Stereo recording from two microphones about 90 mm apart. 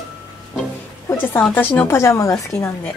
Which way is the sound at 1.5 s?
20° left (ahead or behind).